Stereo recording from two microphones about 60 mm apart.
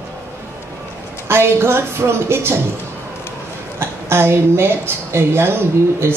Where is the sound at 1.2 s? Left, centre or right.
Right.